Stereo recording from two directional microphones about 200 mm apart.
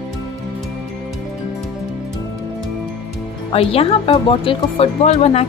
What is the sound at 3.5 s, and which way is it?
Speech, 30° left (ahead or behind).